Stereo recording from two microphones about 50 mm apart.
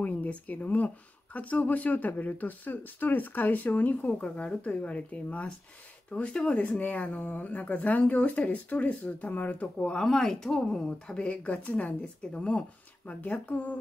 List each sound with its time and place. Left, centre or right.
0.0 s speech: left
4.1 s speech: centre
9.8 s speech: left
10.0 s speech: centre
11.1 s speech: left